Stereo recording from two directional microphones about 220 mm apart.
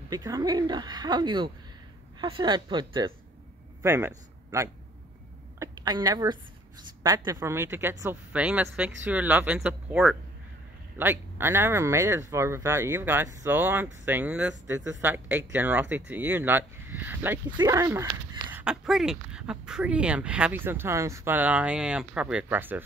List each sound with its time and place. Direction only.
0.1 s speech: 15° right (ahead or behind)
5.6 s a woman's voice: 20° right (ahead or behind)